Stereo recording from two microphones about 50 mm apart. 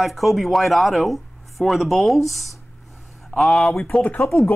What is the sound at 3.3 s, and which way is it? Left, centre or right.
Speech, centre.